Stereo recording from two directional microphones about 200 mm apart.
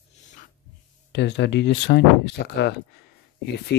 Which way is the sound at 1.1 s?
60° left (ahead or behind).